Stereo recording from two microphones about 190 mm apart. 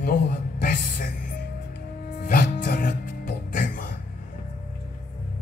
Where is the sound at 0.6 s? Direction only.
45° left (ahead or behind).